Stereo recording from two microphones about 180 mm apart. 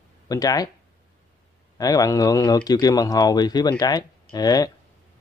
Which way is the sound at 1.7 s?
20° left (ahead or behind).